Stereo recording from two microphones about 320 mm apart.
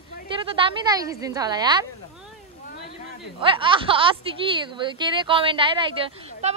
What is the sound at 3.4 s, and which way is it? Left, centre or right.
A woman's voice, centre.